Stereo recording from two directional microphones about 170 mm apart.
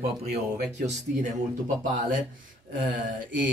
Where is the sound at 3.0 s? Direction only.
50° right (ahead or behind).